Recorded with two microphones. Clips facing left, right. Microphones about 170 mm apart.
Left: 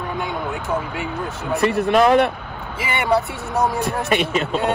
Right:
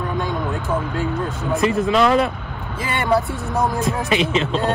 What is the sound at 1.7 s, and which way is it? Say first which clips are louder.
Speech: left 2 dB; 65° left (ahead or behind).